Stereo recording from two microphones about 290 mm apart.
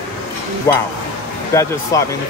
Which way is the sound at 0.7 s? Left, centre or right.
Centre.